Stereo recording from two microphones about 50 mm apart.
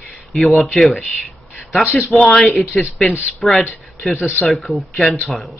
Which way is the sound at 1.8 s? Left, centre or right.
Left.